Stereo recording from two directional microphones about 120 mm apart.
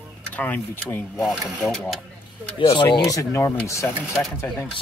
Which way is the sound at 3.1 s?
25° left (ahead or behind).